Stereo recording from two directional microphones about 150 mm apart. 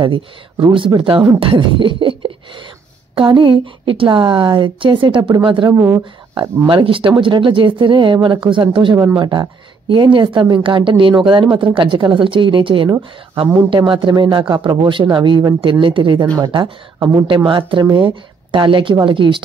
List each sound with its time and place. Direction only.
0.0 s speech: 35° right (ahead or behind)
1.4 s beatboxing: 35° right (ahead or behind)
3.2 s speech: 35° right (ahead or behind)
5.7 s speech: 20° right (ahead or behind)
6.7 s speech: 35° right (ahead or behind)